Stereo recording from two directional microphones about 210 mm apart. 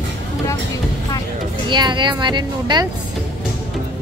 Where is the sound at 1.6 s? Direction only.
20° right (ahead or behind).